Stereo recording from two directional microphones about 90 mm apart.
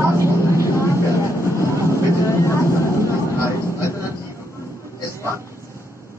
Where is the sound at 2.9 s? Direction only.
30° right (ahead or behind).